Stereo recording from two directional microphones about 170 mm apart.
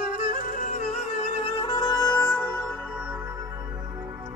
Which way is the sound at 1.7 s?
25° left (ahead or behind).